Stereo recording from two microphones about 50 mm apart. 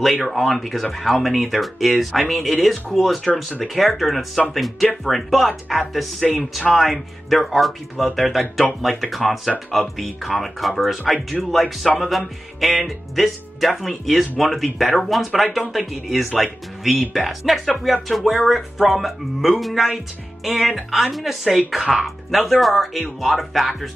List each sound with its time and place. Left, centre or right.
0.0 s speech: centre